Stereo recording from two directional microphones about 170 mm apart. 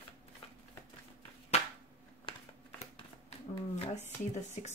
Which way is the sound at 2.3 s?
30° left (ahead or behind).